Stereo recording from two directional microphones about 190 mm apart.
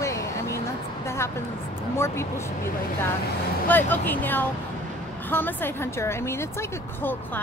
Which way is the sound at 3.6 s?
10° left (ahead or behind).